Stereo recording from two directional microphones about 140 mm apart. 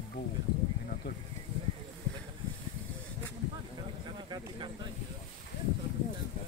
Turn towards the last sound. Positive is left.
turn(degrees=-30)  # may be behind; listen again after turning